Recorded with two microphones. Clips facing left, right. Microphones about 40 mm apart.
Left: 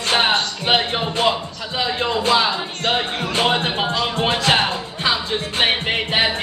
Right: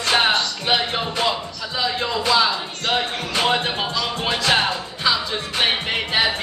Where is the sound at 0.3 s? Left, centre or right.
Left.